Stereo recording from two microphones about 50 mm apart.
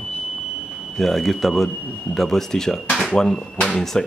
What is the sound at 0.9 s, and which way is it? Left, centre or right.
Speech, centre.